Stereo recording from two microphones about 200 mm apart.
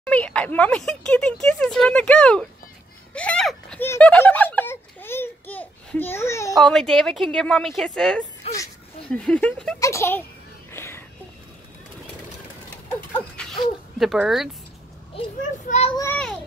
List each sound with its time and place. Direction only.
0.0 s speech: 5° left (ahead or behind)
6.5 s a child's voice: centre (ahead or behind)
10.7 s a sound: 10° left (ahead or behind)
13.1 s speech: 5° left (ahead or behind)
15.6 s a child's voice: 35° left (ahead or behind)
16.0 s a child's voice: 10° left (ahead or behind)